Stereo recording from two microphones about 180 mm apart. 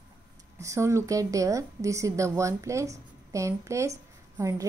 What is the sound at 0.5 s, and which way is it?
A woman's voice, 15° right (ahead or behind).